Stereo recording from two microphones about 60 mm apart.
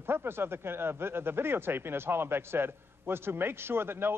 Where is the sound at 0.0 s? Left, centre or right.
Right.